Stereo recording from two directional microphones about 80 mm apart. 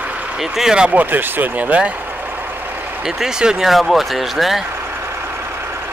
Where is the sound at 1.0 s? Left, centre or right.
Right.